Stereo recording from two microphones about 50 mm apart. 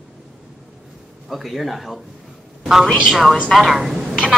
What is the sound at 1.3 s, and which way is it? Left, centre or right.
A man's voice, centre.